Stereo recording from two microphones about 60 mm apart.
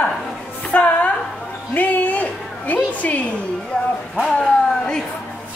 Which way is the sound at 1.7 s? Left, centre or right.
Left.